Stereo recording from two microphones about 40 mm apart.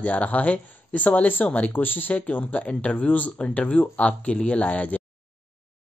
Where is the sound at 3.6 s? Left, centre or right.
Left.